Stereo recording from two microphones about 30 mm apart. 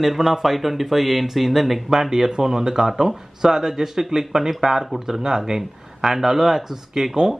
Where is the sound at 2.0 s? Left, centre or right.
Centre.